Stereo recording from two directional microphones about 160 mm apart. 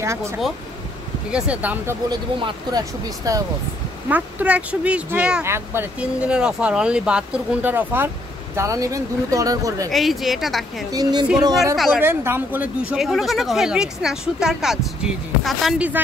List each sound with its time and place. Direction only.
0.0 s speech: 15° right (ahead or behind)
1.3 s speech: 10° right (ahead or behind)
2.0 s speech: 25° right (ahead or behind)
4.1 s speech: 10° right (ahead or behind)
9.8 s speech: centre (ahead or behind)
10.9 s speech: 25° right (ahead or behind)
11.7 s speech: centre (ahead or behind)
12.0 s speech: 15° right (ahead or behind)